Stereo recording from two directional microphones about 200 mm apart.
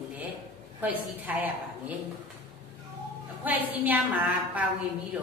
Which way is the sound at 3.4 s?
10° right (ahead or behind).